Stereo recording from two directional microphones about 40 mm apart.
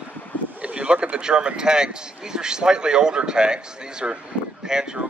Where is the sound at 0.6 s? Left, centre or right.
Right.